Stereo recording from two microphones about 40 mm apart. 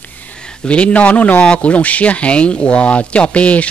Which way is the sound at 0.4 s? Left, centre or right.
Left.